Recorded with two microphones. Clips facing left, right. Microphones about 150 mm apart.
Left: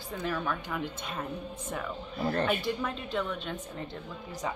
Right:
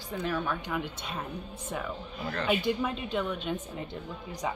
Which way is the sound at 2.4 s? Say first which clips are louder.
Right 2 dB; 10° right (ahead or behind).